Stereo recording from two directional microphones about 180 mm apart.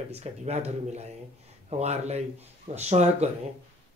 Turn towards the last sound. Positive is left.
turn(degrees=-35)  # may be behind; listen again after turning